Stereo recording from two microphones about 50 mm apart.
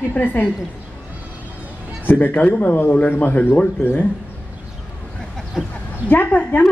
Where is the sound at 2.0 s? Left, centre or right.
Left.